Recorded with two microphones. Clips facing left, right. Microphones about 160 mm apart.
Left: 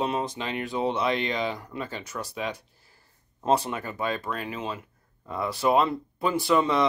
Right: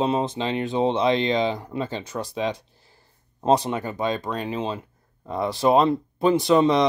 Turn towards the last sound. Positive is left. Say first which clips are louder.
# right 5 dB
turn(degrees=-20)  # may be behind; listen again after turning